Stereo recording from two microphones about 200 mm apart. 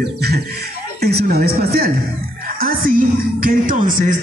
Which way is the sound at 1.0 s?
50° right (ahead or behind).